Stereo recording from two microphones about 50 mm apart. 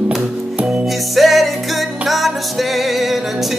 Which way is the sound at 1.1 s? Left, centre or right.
Centre.